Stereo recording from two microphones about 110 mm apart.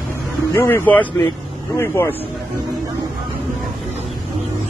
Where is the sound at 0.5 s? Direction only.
20° left (ahead or behind).